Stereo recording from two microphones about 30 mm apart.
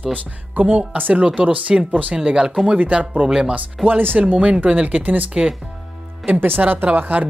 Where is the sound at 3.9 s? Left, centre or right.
Right.